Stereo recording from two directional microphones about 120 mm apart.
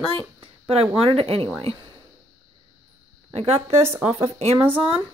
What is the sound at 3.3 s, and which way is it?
Speech, 55° right (ahead or behind).